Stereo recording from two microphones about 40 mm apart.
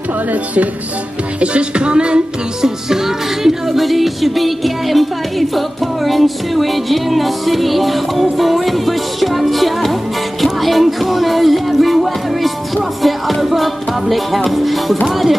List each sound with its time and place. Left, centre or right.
1.4 s music: right
2.9 s music: centre
10.4 s speech: centre